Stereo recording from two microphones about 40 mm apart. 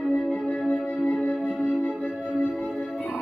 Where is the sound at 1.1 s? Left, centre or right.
Left.